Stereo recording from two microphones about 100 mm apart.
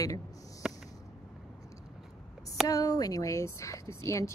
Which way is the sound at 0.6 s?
5° right (ahead or behind).